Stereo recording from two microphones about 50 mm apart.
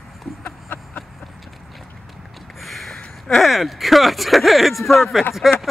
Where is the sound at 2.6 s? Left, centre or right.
Centre.